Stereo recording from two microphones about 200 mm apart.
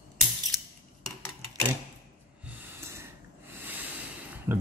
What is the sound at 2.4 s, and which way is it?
Snort, 10° right (ahead or behind).